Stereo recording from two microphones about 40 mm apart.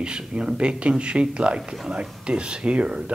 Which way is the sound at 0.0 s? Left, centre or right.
Right.